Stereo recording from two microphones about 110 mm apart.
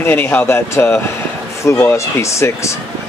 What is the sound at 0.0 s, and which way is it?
Speech, 15° left (ahead or behind).